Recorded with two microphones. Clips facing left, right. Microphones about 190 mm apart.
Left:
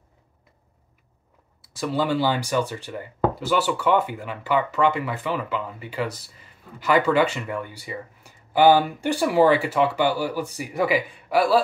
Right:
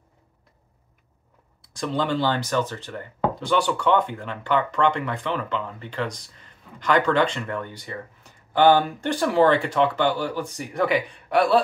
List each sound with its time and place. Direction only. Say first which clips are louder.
1.6 s speech: left 1 dB; 5° left (ahead or behind)